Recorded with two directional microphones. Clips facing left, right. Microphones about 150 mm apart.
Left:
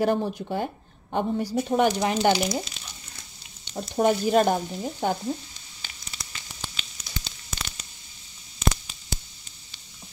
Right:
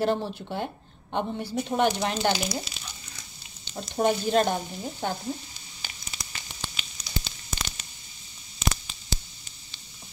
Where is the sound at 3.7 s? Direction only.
10° left (ahead or behind).